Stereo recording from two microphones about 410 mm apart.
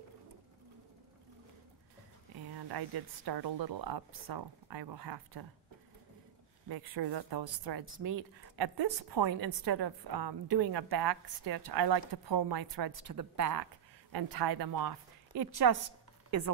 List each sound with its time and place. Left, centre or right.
2.7 s a woman's voice: right
6.7 s speech: right
8.0 s speech: right
8.5 s speech: right
9.5 s a woman's voice: right
13.0 s speech: right
14.1 s a woman's voice: right
16.3 s speech: right